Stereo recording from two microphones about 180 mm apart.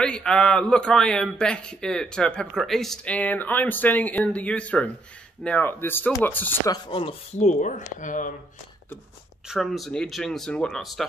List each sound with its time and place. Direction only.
0.0 s a man's voice: 5° left (ahead or behind)
6.9 s speech: 30° left (ahead or behind)
9.5 s a man's voice: centre (ahead or behind)